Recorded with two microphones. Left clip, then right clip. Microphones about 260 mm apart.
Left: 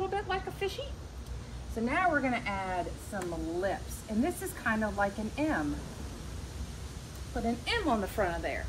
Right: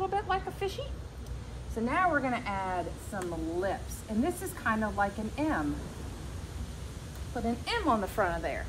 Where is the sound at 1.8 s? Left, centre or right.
Centre.